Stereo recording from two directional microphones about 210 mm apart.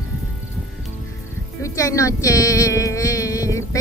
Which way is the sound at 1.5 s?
15° left (ahead or behind).